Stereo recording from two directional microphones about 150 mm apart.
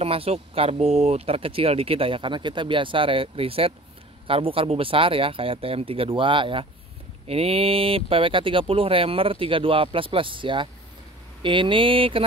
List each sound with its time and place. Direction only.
0.0 s speech: 40° right (ahead or behind)